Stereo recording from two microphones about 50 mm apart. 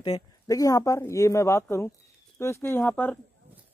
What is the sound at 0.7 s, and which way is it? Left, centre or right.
Speech, left.